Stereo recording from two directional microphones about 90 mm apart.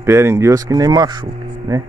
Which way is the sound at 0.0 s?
30° right (ahead or behind).